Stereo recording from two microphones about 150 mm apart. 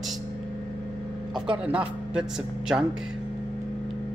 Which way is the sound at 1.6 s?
10° right (ahead or behind).